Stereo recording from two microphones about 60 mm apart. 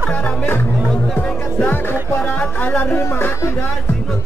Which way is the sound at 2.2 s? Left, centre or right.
Left.